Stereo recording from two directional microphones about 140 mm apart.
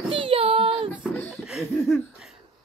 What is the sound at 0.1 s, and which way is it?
Child singing, 40° right (ahead or behind).